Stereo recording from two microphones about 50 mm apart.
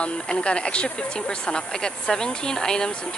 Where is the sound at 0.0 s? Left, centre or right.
Left.